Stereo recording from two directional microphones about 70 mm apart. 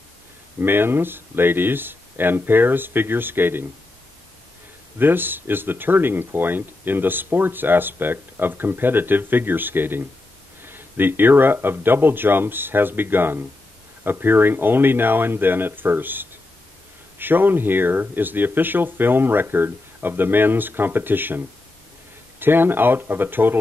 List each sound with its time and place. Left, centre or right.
0.6 s speech: right
4.9 s speech: right
22.4 s speech: right